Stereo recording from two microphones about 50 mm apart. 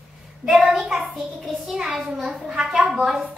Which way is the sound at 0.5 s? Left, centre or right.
Centre.